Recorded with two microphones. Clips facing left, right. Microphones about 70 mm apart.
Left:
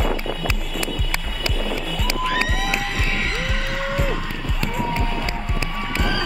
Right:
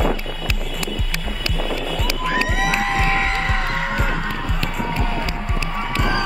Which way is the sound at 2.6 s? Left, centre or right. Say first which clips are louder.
Right 5 dB; right.